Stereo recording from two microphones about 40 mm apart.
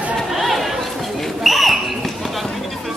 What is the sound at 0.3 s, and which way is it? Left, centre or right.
Chatter, centre.